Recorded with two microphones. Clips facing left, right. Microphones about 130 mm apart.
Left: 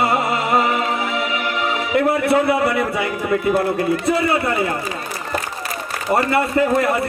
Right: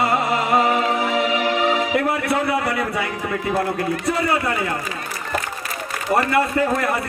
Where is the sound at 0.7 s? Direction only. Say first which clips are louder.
Right 1 dB; 30° right (ahead or behind).